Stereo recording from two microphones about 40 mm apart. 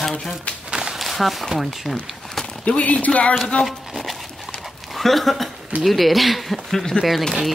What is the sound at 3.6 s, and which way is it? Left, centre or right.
Dog, centre.